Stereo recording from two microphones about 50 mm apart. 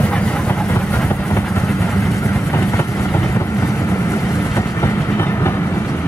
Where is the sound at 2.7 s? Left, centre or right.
Left.